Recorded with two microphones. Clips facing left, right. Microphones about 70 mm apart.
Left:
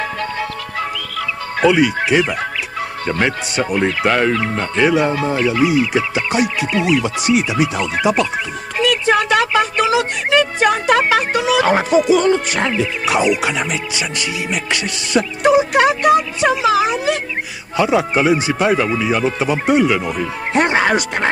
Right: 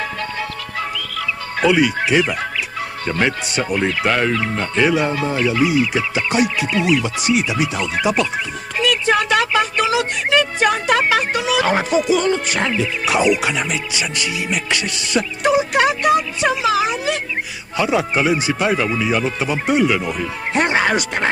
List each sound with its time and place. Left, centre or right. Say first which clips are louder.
0.4 s music: left 2 dB; left
3.1 s speech: left 1 dB; left